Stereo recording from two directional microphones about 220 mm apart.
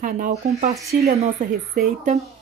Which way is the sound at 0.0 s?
35° right (ahead or behind).